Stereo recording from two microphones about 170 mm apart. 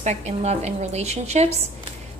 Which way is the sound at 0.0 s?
40° right (ahead or behind).